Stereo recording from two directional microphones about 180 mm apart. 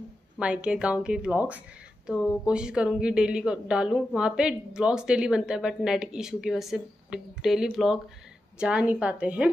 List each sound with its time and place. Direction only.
0.4 s a woman's voice: 5° right (ahead or behind)